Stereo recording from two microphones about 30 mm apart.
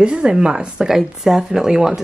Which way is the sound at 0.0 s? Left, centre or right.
Right.